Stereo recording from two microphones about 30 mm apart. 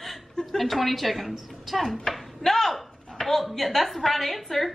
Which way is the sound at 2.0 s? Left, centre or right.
Centre.